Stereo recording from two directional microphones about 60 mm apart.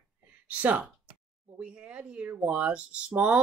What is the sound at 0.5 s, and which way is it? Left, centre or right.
Speech, right.